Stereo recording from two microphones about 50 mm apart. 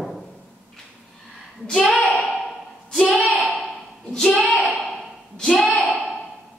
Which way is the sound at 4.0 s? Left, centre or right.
Centre.